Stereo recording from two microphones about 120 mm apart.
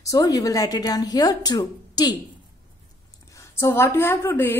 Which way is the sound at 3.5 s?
20° left (ahead or behind).